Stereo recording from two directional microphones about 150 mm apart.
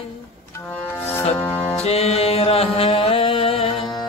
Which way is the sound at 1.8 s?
45° left (ahead or behind).